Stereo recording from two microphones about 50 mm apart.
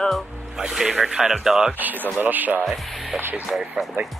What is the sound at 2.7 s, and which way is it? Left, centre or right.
Speech, centre.